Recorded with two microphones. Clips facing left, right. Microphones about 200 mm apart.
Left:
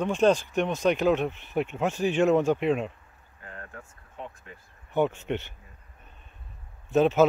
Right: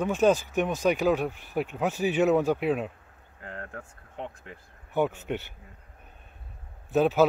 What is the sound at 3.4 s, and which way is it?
Speech, 70° right (ahead or behind).